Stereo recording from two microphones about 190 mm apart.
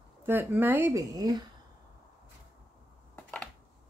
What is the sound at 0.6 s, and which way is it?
Speech, 10° right (ahead or behind).